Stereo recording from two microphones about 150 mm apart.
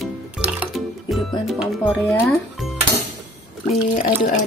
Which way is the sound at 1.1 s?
Centre (ahead or behind).